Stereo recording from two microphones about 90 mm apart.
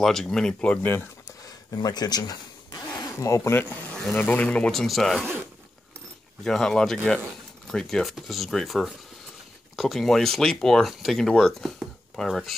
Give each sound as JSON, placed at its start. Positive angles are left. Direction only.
{"t": 0.0, "sound": "speech", "side_deg": 5}
{"t": 1.7, "sound": "speech", "side_deg": 45}
{"t": 3.6, "sound": "speech", "side_deg": 15}
{"t": 6.4, "sound": "speech", "side_deg": 5}